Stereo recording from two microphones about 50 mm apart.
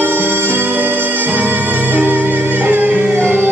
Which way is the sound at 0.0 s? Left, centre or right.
Right.